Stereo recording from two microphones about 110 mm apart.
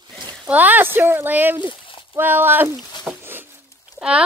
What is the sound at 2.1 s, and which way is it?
Speech, 15° right (ahead or behind).